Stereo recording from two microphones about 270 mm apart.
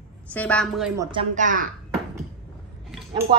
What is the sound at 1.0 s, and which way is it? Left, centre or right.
Speech, centre.